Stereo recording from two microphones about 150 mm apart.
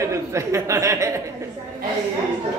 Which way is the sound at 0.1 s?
20° right (ahead or behind).